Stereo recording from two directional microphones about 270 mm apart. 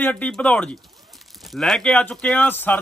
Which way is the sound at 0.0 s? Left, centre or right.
Centre.